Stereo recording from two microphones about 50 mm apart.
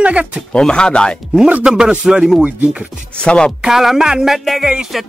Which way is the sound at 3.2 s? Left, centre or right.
Left.